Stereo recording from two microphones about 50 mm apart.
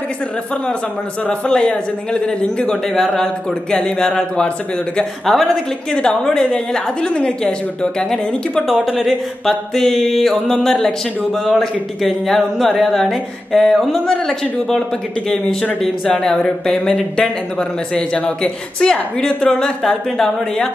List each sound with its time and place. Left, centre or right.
1.5 s speech: left
5.2 s speech: centre
8.7 s speech: centre
9.0 s speech: centre
14.0 s speech: centre
16.3 s speech: centre